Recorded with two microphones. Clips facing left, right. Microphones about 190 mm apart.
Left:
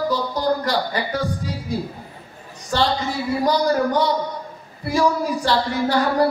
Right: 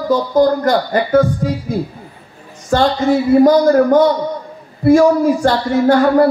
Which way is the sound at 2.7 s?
50° right (ahead or behind).